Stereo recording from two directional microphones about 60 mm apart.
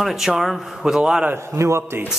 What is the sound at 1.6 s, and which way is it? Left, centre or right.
Speech, right.